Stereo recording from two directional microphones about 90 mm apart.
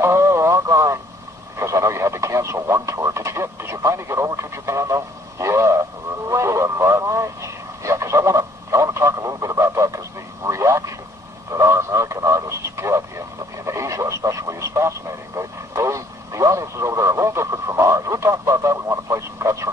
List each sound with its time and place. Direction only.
0.0 s radio: 30° right (ahead or behind)
1.6 s speech: 35° right (ahead or behind)
7.8 s radio: 35° right (ahead or behind)
13.7 s speech: 35° right (ahead or behind)